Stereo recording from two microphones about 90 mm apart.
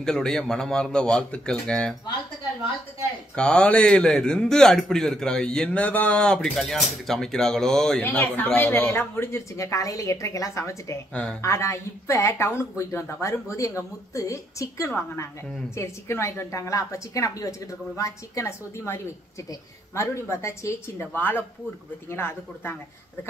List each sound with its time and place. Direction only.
0.0 s a man's voice: 5° left (ahead or behind)
3.3 s a man's voice: 10° left (ahead or behind)
8.0 s speech: 20° left (ahead or behind)
20.0 s speech: 30° left (ahead or behind)